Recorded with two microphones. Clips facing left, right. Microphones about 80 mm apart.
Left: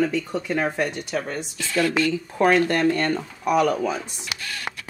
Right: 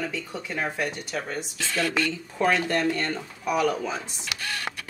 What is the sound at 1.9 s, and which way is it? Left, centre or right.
Speech, left.